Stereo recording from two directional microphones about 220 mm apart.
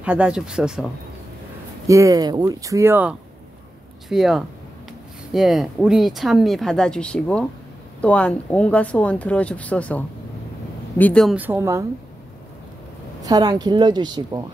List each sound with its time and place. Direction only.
0.0 s speech: 5° right (ahead or behind)
1.9 s speech: 15° right (ahead or behind)
13.2 s speech: 15° right (ahead or behind)